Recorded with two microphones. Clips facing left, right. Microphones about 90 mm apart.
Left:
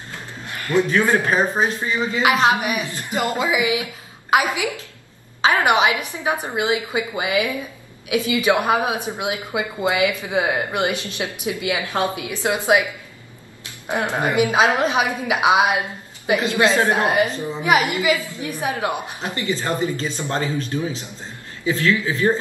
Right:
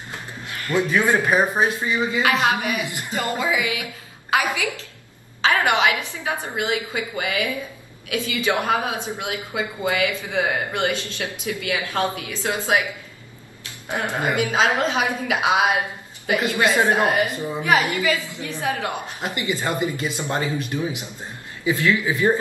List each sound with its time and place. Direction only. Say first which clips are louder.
0.7 s speech: left 2 dB; 15° right (ahead or behind)
2.2 s a woman's voice: left 5 dB; 20° left (ahead or behind)
2.8 s speech: even; 15° right (ahead or behind)
3.1 s a man's voice: left 3 dB; 20° left (ahead or behind)
13.8 s a man's voice: left 2 dB; 20° left (ahead or behind)
17.3 s speech: left 1 dB; 15° right (ahead or behind)
17.6 s a woman's voice: left 2 dB; 20° left (ahead or behind)
19.2 s speech: left 1 dB; 20° right (ahead or behind)